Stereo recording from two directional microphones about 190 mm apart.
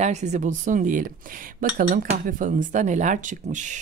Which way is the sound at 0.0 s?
35° right (ahead or behind).